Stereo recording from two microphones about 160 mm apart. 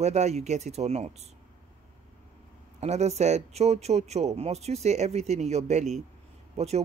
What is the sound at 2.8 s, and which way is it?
Speech, 45° right (ahead or behind).